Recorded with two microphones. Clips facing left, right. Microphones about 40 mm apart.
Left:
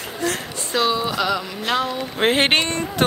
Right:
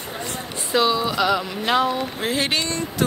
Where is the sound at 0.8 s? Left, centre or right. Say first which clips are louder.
Left 2 dB; centre.